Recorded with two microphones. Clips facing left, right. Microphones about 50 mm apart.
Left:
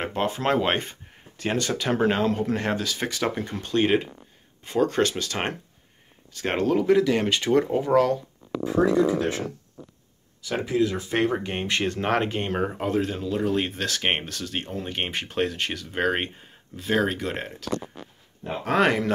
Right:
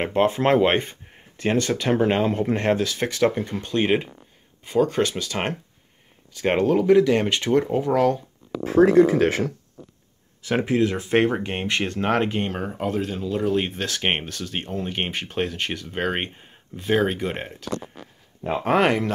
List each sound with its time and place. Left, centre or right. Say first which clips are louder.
0.0 s speech: right 5 dB; right
1.4 s speech: right 4 dB; centre
2.0 s speech: right 2 dB; centre
2.8 s speech: right 5 dB; centre
3.5 s speech: even; centre
8.6 s speech: right 6 dB; right
10.7 s speech: right 2 dB; right
11.2 s speech: right 2 dB; centre
11.6 s speech: right 2 dB; centre
18.4 s speech: right 6 dB; right
18.8 s speech: left 1 dB; centre